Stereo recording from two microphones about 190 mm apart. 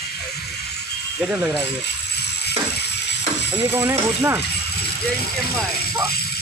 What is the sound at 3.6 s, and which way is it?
Speech, 10° right (ahead or behind).